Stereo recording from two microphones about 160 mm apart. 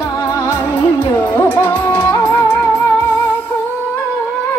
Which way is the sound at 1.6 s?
10° left (ahead or behind).